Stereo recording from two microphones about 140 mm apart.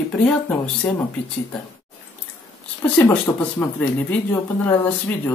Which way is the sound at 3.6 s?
10° left (ahead or behind).